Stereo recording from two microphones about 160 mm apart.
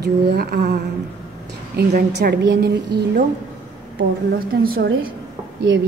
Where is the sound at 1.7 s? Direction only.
90° right.